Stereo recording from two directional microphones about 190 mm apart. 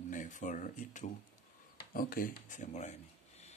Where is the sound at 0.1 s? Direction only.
45° left (ahead or behind).